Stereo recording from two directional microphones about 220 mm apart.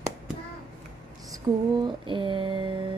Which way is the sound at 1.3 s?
20° right (ahead or behind).